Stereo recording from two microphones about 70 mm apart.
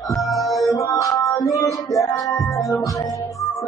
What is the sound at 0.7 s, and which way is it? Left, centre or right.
Music, left.